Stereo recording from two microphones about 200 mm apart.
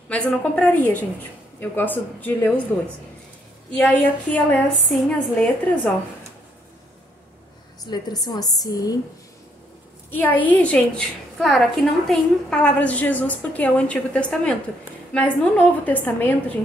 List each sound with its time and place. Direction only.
0.1 s a woman's voice: 5° left (ahead or behind)
3.7 s a woman's voice: 5° left (ahead or behind)
7.8 s a woman's voice: 20° left (ahead or behind)
10.1 s a woman's voice: 10° left (ahead or behind)